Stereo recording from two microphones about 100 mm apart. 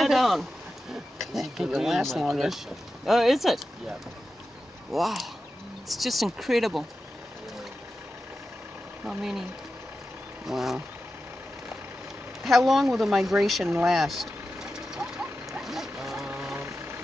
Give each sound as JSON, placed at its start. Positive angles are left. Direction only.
{"t": 0.0, "sound": "speech", "side_deg": 0}
{"t": 4.9, "sound": "speech", "side_deg": 0}
{"t": 10.4, "sound": "speech", "side_deg": -5}
{"t": 12.4, "sound": "speech", "side_deg": 0}
{"t": 13.8, "sound": "vehicle", "side_deg": 0}
{"t": 15.1, "sound": "dog", "side_deg": -20}
{"t": 15.6, "sound": "vehicle", "side_deg": -5}
{"t": 16.3, "sound": "vehicle", "side_deg": -25}